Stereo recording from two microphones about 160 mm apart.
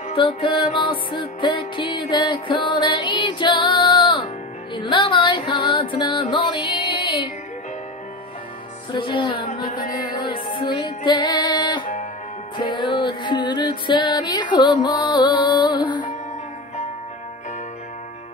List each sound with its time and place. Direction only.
0.1 s music: 30° left (ahead or behind)
8.9 s music: 30° left (ahead or behind)